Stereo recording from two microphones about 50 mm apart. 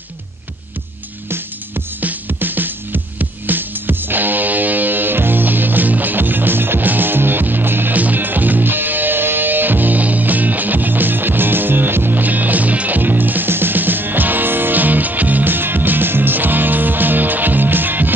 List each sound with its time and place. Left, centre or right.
2.0 s music: right